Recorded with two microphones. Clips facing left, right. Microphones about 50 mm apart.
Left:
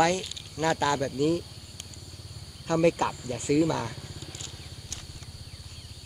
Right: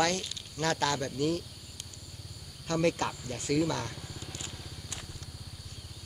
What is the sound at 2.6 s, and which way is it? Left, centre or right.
Speech, centre.